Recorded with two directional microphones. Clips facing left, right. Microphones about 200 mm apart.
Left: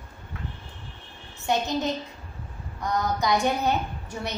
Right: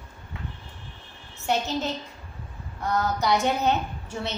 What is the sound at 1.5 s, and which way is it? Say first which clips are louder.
A woman's voice: left 1 dB; 15° left (ahead or behind).